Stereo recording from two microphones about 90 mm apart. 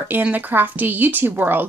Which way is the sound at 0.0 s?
20° right (ahead or behind).